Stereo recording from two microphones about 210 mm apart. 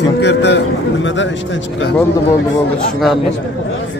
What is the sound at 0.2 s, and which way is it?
A man's voice, 55° left (ahead or behind).